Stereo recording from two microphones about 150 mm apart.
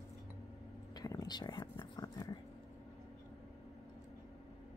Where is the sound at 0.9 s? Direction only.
25° left (ahead or behind).